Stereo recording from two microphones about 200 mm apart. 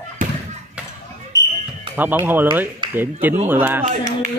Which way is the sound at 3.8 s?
40° right (ahead or behind).